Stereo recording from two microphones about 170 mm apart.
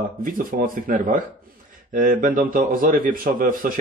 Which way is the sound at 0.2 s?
55° right (ahead or behind).